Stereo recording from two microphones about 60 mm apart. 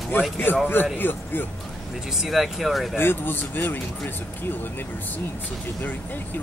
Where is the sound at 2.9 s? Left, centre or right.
Left.